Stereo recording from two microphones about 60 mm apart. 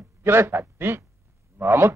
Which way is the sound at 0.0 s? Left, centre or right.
Right.